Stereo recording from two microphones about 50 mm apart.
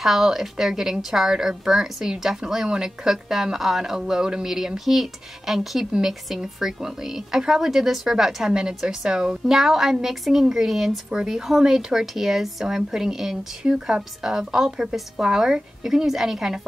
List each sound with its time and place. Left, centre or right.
0.0 s a woman's voice: centre
8.5 s speech: centre
9.5 s a woman's voice: centre